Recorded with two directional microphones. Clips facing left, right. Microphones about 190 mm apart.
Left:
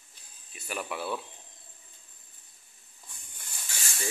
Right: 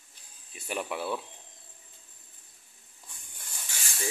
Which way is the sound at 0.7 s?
20° right (ahead or behind).